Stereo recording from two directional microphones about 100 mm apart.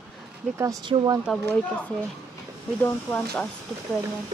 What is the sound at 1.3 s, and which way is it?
Speech, 5° right (ahead or behind).